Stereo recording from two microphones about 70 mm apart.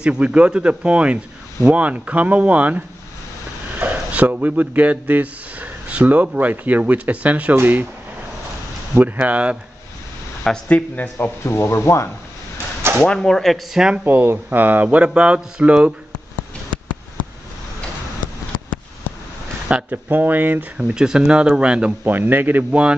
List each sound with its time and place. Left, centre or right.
0.0 s speech: centre
3.8 s a man's voice: centre
9.0 s speech: right
10.7 s speech: left
12.9 s speech: centre
13.7 s speech: centre
14.0 s speech: right; by 15.9 s centre
19.9 s speech: right
20.7 s speech: centre
22.0 s speech: right
22.7 s speech: centre